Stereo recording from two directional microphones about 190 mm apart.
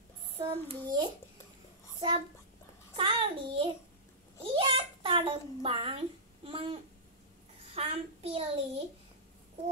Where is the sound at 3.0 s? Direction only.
25° right (ahead or behind).